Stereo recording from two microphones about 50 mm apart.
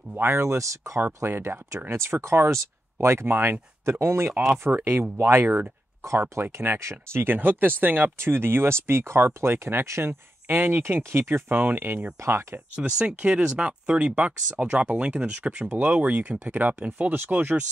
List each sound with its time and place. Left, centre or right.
0.2 s speech: right
1.2 s speech: right
6.0 s speech: right
6.4 s speech: right
11.0 s speech: right
12.2 s speech: right
12.5 s speech: right
17.1 s speech: right